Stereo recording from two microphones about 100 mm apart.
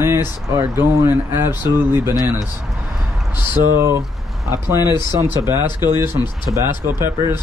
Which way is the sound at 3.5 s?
20° right (ahead or behind).